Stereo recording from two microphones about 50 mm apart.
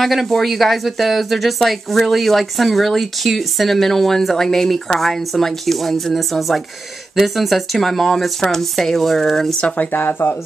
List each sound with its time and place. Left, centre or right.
0.0 s a woman's voice: centre
9.8 s speech: left